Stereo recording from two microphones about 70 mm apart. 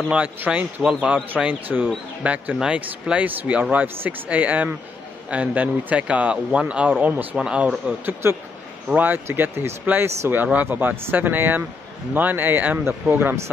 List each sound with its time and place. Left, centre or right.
0.1 s a man's voice: centre